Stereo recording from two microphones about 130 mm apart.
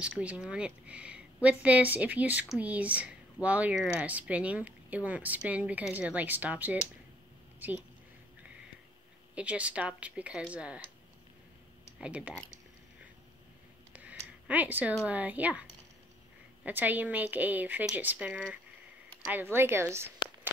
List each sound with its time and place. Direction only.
0.0 s speech: 10° right (ahead or behind)
9.3 s speech: 10° right (ahead or behind)
12.0 s speech: 10° right (ahead or behind)
13.9 s a sound: 10° right (ahead or behind)
15.0 s speech: 10° right (ahead or behind)
16.6 s speech: 15° right (ahead or behind)